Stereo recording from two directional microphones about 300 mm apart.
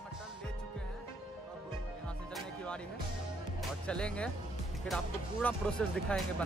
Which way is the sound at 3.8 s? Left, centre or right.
Centre.